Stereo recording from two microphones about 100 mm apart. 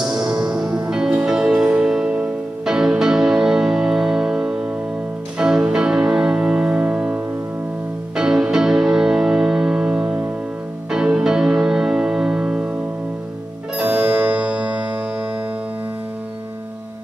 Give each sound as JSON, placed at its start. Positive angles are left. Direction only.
{"t": 0.0, "sound": "music", "side_deg": -5}
{"t": 13.7, "sound": "music", "side_deg": -10}